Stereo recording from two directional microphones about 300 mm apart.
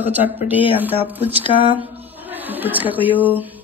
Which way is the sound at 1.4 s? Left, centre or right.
Centre.